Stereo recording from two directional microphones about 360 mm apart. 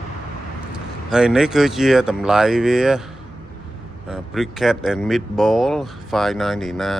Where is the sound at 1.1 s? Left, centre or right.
Centre.